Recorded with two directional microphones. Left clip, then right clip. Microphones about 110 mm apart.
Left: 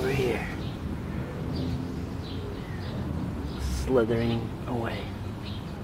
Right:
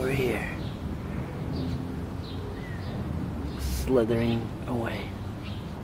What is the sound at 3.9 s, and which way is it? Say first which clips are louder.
Speech: even; 25° right (ahead or behind).